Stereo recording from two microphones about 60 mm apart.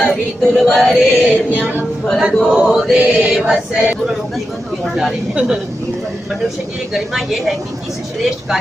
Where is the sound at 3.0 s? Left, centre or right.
Right.